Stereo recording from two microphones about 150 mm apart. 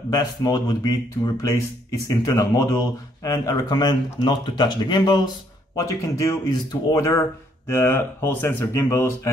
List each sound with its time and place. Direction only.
0.1 s speech: 25° left (ahead or behind)